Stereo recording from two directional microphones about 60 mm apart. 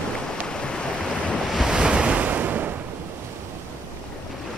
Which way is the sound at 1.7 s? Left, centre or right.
Centre.